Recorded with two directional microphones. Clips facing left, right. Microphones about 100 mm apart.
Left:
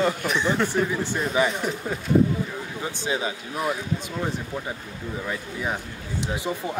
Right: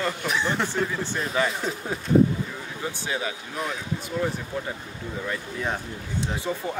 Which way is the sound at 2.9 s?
20° left (ahead or behind).